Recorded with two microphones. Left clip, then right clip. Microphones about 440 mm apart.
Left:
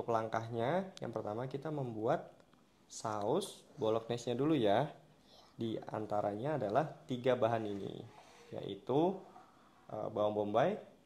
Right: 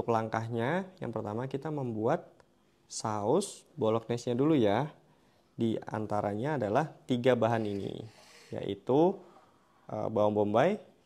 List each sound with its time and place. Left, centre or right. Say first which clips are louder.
0.0 s speech: right 5 dB; right